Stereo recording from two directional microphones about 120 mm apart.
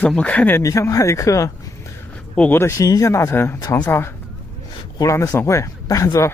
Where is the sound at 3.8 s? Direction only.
20° left (ahead or behind).